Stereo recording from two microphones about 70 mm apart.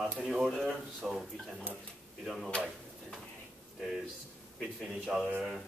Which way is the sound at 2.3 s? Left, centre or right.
Centre.